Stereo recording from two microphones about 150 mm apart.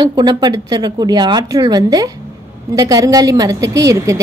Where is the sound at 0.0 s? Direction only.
30° right (ahead or behind).